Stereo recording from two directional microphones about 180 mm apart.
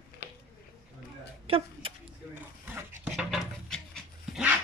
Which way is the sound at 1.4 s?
30° right (ahead or behind).